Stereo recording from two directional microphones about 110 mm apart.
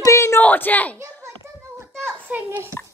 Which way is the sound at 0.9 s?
25° right (ahead or behind).